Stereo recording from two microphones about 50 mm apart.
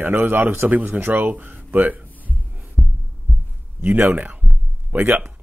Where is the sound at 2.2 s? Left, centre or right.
Right.